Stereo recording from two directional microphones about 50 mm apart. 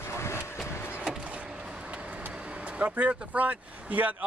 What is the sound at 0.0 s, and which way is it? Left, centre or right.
Vehicle, left.